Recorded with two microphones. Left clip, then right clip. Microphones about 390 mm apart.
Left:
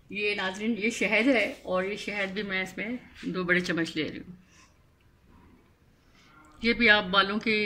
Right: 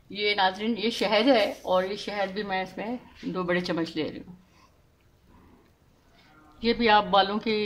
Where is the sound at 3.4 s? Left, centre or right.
Centre.